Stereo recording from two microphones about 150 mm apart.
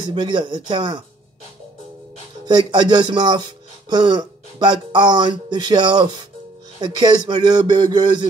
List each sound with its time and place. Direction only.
0.0 s speech: 30° right (ahead or behind)
2.4 s speech: 30° right (ahead or behind)